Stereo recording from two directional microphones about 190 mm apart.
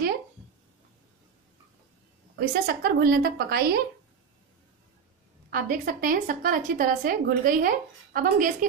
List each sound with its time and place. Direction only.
2.3 s a woman's voice: 55° right (ahead or behind)
5.5 s a woman's voice: 45° right (ahead or behind)